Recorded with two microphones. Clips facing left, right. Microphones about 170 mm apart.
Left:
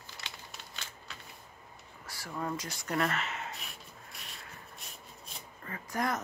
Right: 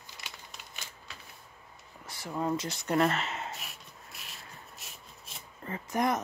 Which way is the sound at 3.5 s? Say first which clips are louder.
Right 1 dB; centre (ahead or behind).